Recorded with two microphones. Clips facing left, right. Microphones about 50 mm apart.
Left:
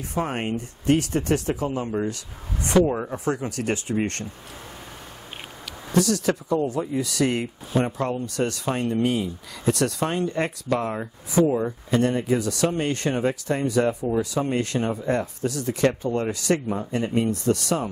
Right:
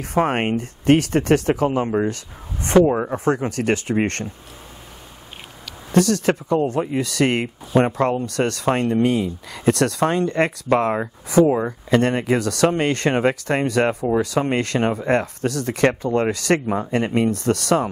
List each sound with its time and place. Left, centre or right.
0.2 s speech: right
2.9 s speech: right
3.3 s speech: right
5.9 s speech: right
11.4 s speech: right
11.9 s speech: right